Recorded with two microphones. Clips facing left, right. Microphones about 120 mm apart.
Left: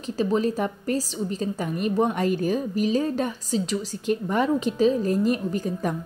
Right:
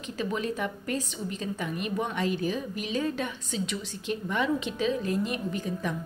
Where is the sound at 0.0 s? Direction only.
35° left (ahead or behind).